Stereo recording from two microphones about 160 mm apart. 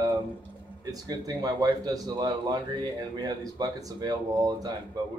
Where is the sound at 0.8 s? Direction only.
20° right (ahead or behind).